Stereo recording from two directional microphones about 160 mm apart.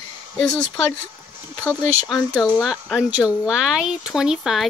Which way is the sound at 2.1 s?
5° left (ahead or behind).